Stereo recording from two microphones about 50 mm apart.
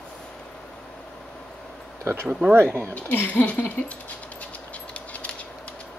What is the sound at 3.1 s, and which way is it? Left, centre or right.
Speech, left.